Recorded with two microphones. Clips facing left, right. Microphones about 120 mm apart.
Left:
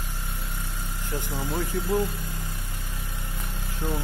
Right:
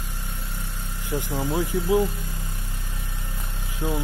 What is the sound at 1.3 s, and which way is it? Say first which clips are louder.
Speech: right 4 dB; 20° right (ahead or behind).